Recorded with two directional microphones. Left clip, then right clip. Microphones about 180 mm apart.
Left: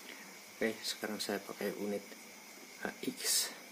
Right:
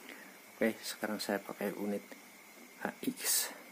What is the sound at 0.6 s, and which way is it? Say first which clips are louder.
Speech: right 2 dB; 60° right (ahead or behind).